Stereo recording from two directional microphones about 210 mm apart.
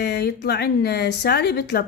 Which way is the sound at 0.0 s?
50° left (ahead or behind).